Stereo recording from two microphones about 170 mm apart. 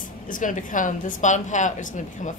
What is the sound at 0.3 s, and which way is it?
A woman's voice, 50° left (ahead or behind).